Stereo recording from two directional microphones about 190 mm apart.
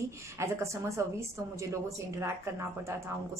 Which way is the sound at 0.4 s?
15° right (ahead or behind).